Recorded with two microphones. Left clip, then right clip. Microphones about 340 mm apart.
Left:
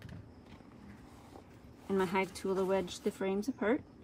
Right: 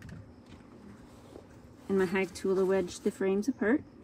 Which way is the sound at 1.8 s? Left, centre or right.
Centre.